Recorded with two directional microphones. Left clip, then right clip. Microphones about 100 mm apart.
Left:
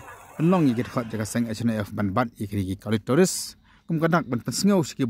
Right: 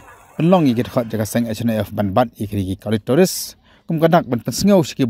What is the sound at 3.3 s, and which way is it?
Speech, 25° right (ahead or behind).